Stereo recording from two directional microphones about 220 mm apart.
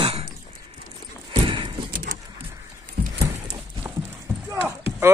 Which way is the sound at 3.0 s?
45° right (ahead or behind).